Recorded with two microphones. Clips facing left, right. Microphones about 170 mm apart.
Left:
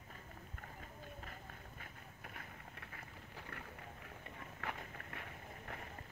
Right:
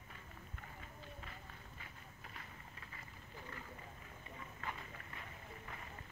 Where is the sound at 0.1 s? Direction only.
45° left (ahead or behind).